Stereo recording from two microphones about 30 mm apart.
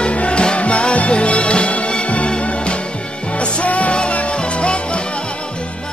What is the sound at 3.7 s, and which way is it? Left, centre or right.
Music, left.